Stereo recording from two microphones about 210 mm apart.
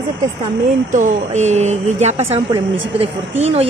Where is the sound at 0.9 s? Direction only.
35° right (ahead or behind).